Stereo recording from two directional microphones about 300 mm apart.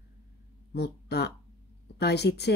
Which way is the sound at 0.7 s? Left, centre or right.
Left.